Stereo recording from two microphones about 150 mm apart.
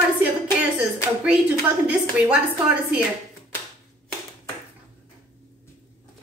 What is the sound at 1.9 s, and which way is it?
A woman's voice, 10° right (ahead or behind).